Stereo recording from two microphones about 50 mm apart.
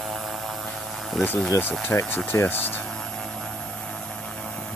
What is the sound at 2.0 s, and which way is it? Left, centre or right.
Speech, left.